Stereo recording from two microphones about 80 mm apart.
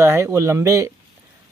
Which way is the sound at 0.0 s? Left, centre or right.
Right.